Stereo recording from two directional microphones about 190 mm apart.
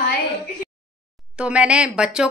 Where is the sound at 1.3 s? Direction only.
5° right (ahead or behind).